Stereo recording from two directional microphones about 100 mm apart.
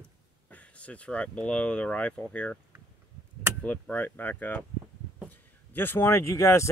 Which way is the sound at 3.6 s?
15° left (ahead or behind).